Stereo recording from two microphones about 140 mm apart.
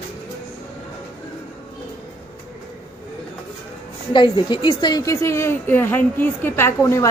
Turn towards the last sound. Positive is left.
turn(degrees=20)  # may be behind; listen again after turning